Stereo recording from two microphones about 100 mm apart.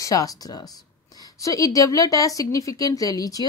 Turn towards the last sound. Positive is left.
turn(degrees=40)  # may be behind; listen again after turning